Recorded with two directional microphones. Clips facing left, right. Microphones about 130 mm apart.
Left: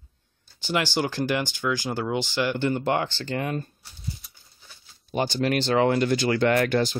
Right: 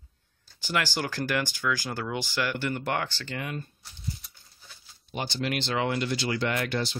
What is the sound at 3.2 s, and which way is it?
Speech, 40° left (ahead or behind).